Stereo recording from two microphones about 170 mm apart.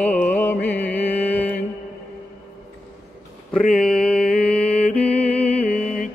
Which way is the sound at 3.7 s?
5° left (ahead or behind).